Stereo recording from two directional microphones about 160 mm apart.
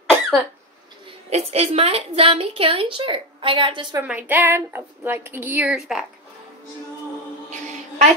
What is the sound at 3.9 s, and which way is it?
A woman's voice, 10° right (ahead or behind).